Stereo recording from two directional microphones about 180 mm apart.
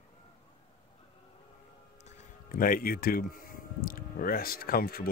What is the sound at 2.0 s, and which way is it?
Speech, 45° left (ahead or behind).